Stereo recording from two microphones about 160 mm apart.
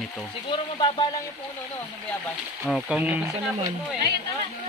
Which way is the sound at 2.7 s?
5° right (ahead or behind).